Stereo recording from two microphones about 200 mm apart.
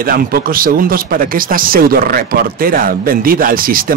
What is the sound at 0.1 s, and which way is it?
Speech, 45° right (ahead or behind).